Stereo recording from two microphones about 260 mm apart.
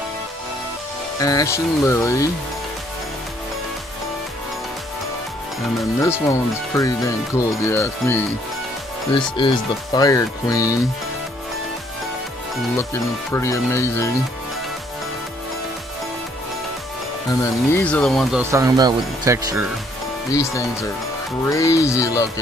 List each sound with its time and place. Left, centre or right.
1.2 s speech: centre
6.2 s speech: centre
9.4 s speech: centre
12.7 s speech: centre
17.3 s speech: centre
21.5 s speech: centre